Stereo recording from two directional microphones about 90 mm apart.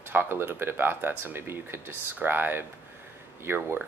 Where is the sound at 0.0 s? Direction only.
25° right (ahead or behind).